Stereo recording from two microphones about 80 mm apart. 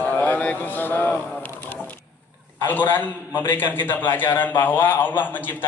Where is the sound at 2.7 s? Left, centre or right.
Left.